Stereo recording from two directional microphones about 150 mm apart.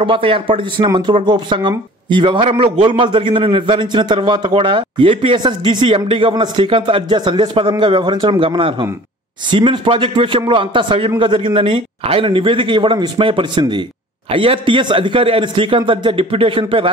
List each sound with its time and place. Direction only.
0.0 s a man's voice: 35° right (ahead or behind)